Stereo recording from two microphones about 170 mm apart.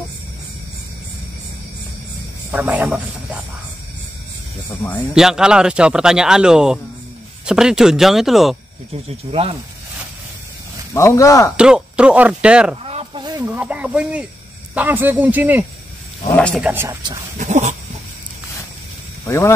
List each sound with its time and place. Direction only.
2.5 s speech: 10° right (ahead or behind)
5.1 s speech: 5° right (ahead or behind)
8.9 s speech: 35° right (ahead or behind)
10.9 s speech: 15° left (ahead or behind)
11.5 s speech: 5° right (ahead or behind)
12.8 s a sound: 30° right (ahead or behind); by 14.2 s 5° right (ahead or behind)
14.7 s speech: 10° right (ahead or behind)
16.3 s speech: 5° left (ahead or behind)
16.6 s speech: 15° right (ahead or behind)
17.4 s dog: 45° right (ahead or behind)
19.2 s speech: 15° left (ahead or behind)